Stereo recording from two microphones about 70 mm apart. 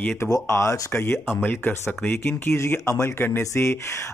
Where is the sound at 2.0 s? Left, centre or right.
Left.